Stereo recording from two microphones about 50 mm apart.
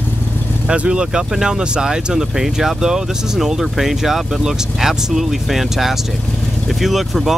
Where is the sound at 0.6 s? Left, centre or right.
Right.